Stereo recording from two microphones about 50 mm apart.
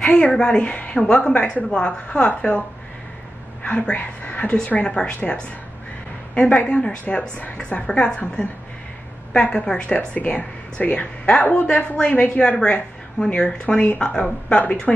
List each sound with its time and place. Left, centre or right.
0.2 s speech: centre
0.6 s a woman's voice: left
3.6 s a woman's voice: left
6.3 s a woman's voice: left